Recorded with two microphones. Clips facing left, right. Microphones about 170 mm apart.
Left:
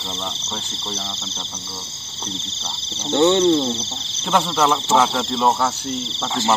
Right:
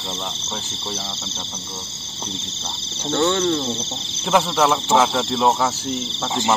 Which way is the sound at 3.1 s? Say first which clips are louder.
Left 4 dB; 20° left (ahead or behind).